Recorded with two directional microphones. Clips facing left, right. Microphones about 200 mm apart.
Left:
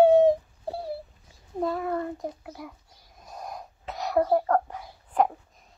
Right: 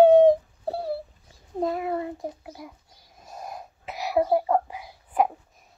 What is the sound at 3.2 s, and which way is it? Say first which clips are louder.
Sneeze: right 1 dB; 5° right (ahead or behind).